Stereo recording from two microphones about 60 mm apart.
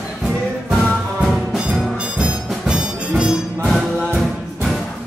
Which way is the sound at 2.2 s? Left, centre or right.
Centre.